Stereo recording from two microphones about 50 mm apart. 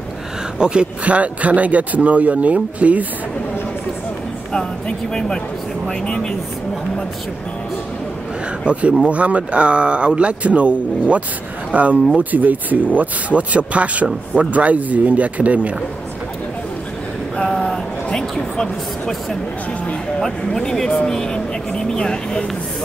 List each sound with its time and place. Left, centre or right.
0.6 s speech: centre
4.5 s speech: centre
8.6 s speech: right
17.4 s a sound: centre
18.3 s speech: centre
20.2 s speech: centre